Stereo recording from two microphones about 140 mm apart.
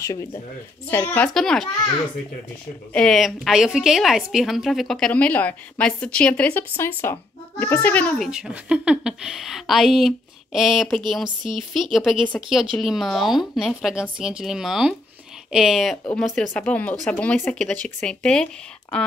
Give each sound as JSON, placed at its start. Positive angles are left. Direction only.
{"t": 0.0, "sound": "a woman's voice", "side_deg": 20}
{"t": 2.9, "sound": "a woman's voice", "side_deg": 5}
{"t": 8.3, "sound": "a woman's voice", "side_deg": -5}
{"t": 11.2, "sound": "speech", "side_deg": -35}
{"t": 11.7, "sound": "a woman's voice", "side_deg": 0}